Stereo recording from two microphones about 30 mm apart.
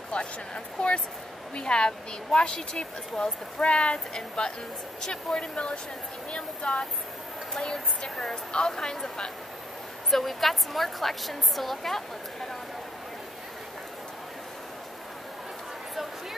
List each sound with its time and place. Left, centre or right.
0.1 s a sound: left
0.7 s speech: left
10.1 s a woman's voice: centre